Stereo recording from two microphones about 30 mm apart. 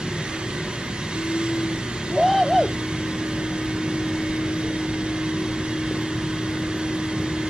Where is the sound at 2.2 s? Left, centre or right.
Centre.